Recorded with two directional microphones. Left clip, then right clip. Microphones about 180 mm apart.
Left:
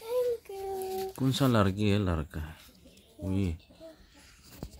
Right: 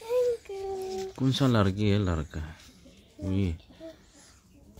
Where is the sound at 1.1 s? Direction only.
10° left (ahead or behind).